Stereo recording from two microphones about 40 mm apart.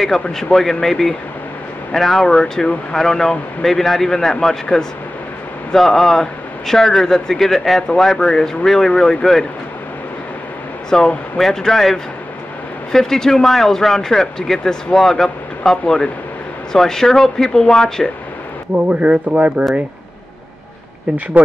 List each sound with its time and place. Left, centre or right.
0.0 s speech: centre
10.9 s speech: centre
18.9 s speech: right